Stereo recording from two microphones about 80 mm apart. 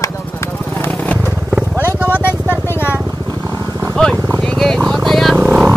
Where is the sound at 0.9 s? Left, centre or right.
Centre.